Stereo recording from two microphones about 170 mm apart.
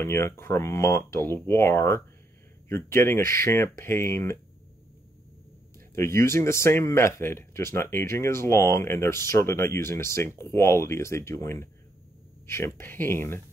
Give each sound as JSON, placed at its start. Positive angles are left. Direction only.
{"t": 0.0, "sound": "speech", "side_deg": 15}
{"t": 5.9, "sound": "speech", "side_deg": 15}